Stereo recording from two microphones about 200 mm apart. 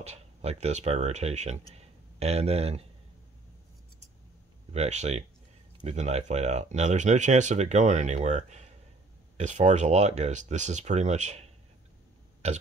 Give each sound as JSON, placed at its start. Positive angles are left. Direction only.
{"t": 0.0, "sound": "speech", "side_deg": -30}
{"t": 4.7, "sound": "speech", "side_deg": -35}